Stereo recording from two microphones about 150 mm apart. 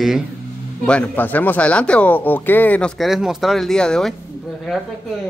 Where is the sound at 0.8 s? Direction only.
10° left (ahead or behind).